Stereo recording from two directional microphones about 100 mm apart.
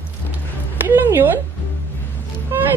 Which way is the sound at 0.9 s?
25° right (ahead or behind).